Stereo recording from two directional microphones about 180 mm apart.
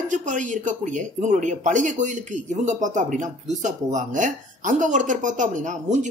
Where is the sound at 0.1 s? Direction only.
45° right (ahead or behind).